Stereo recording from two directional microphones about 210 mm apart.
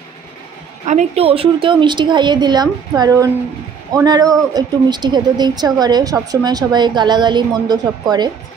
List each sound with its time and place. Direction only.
0.8 s a woman's voice: 30° right (ahead or behind)